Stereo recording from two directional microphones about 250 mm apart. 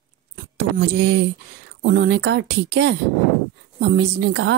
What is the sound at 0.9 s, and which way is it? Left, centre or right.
Speech, right.